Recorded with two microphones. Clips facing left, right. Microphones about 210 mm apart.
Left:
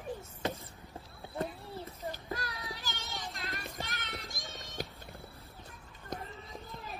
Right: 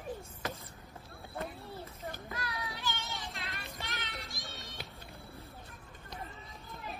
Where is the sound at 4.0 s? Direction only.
50° left (ahead or behind).